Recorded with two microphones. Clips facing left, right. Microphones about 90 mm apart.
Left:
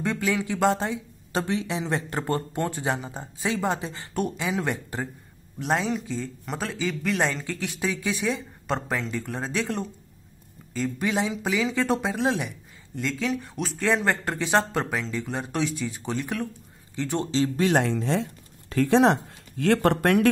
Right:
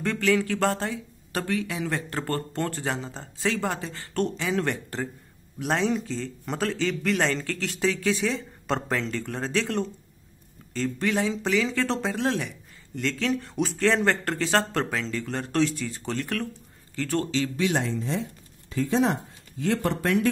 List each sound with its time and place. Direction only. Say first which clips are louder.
0.0 s speech: right 2 dB; 15° left (ahead or behind)
17.3 s speech: left 3 dB; 35° left (ahead or behind)
17.7 s speech: left 4 dB; 65° left (ahead or behind)